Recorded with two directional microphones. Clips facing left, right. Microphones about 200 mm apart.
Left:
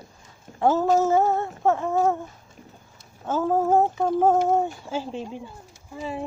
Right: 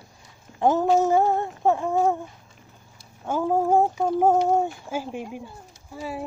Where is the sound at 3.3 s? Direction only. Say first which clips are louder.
Even; 10° right (ahead or behind).